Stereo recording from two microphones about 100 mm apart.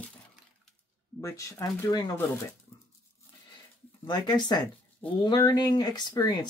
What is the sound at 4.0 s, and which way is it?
Speech, 45° left (ahead or behind).